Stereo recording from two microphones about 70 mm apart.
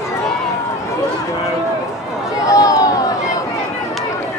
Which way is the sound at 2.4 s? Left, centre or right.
Left.